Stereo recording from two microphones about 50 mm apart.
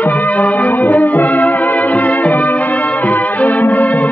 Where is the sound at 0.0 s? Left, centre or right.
Left.